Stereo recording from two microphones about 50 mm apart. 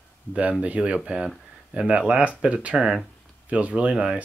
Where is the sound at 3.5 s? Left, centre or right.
Right.